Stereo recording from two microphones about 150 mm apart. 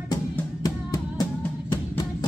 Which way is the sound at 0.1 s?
25° left (ahead or behind).